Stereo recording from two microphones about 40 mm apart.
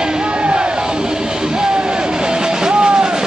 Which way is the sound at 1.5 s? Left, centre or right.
Centre.